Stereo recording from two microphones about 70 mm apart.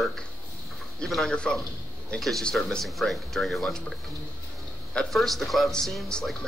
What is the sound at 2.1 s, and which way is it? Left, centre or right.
Speech, centre.